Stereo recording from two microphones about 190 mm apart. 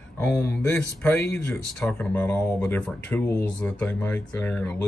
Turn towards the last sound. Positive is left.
turn(degrees=10)  # may be behind; listen again after turning